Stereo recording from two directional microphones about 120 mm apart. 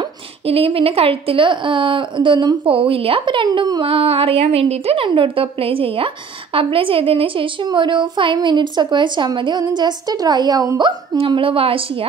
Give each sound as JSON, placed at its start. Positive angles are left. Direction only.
{"t": 0.5, "sound": "a woman's voice", "side_deg": -50}
{"t": 11.1, "sound": "a woman's voice", "side_deg": -50}